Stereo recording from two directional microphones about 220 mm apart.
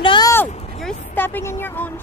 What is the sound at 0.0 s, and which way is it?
Vehicle, 20° left (ahead or behind).